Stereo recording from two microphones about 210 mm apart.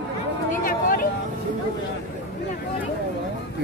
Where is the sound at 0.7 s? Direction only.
45° left (ahead or behind).